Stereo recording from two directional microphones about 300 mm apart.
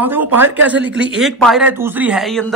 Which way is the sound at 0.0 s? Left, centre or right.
Centre.